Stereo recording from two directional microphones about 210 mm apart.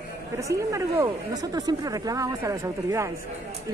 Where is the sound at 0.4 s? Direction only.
15° right (ahead or behind).